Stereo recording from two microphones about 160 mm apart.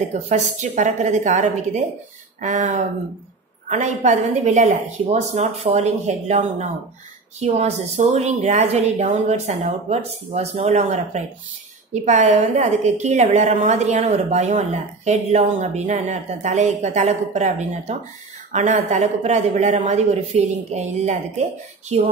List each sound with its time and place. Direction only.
0.3 s a woman's voice: 50° right (ahead or behind)